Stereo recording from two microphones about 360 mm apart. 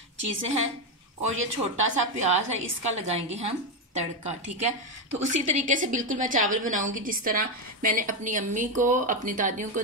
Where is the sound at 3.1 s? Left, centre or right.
Centre.